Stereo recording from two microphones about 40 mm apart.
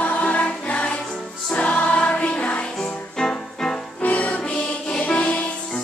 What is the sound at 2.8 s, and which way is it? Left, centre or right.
Music, centre.